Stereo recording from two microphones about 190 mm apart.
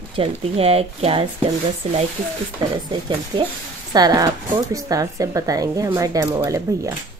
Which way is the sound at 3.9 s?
20° right (ahead or behind).